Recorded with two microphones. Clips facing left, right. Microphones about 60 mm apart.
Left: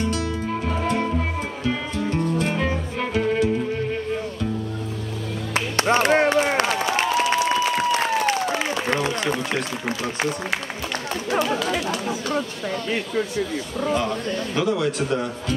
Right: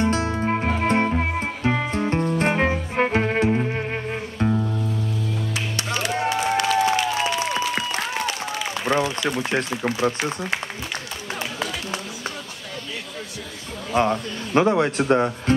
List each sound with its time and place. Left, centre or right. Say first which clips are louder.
0.0 s music: right 3 dB; right
5.8 s music: left 9 dB; left
9.2 s a sound: even; left
13.9 s speech: right 7 dB; right